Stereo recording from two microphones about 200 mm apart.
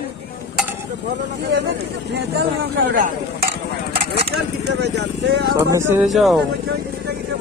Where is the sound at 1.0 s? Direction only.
60° right (ahead or behind).